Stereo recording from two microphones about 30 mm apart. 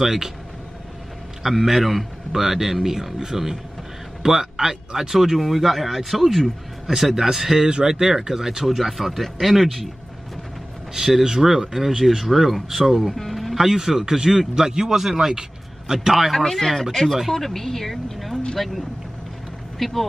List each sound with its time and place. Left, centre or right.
0.0 s a man's voice: centre
1.7 s a man's voice: centre
11.0 s a man's voice: centre
13.3 s music: centre
13.6 s a man's voice: centre
16.3 s a woman's voice: centre